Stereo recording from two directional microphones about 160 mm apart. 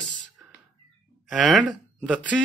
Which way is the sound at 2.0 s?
5° left (ahead or behind).